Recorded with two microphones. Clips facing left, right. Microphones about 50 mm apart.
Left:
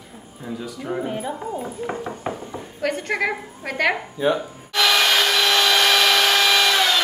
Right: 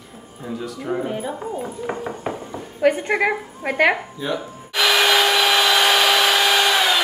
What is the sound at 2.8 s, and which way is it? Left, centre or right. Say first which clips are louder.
A woman's voice: right 5 dB; centre.